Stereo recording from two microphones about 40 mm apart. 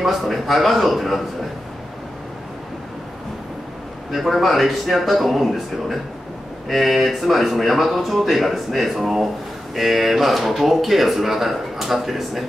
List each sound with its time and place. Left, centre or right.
0.0 s speech: centre
4.1 s speech: centre